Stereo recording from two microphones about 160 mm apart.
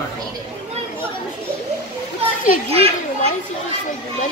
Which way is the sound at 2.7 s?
40° right (ahead or behind).